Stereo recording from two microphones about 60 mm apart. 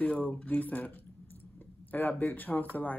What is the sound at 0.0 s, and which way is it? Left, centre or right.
Speech, left.